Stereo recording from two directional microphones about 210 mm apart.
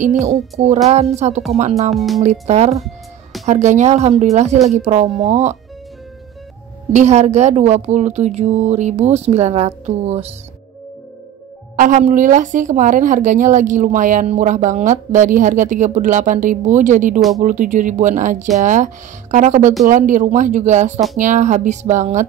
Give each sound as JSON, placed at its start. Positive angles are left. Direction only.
{"t": 0.2, "sound": "a woman's voice", "side_deg": -35}
{"t": 2.0, "sound": "speech", "side_deg": 0}
{"t": 2.4, "sound": "a woman's voice", "side_deg": -30}
{"t": 6.9, "sound": "a woman's voice", "side_deg": -35}
{"t": 11.7, "sound": "a woman's voice", "side_deg": -40}